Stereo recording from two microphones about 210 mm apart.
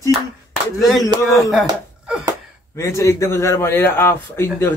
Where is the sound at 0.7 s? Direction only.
Centre (ahead or behind).